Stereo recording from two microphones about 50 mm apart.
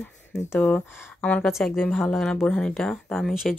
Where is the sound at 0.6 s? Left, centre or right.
Left.